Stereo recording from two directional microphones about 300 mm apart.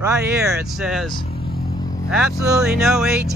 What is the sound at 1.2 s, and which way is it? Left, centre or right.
Vehicle, left.